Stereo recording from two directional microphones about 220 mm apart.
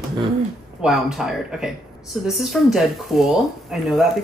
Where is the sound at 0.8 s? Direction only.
Centre (ahead or behind).